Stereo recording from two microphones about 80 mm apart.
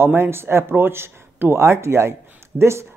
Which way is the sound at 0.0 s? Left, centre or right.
Right.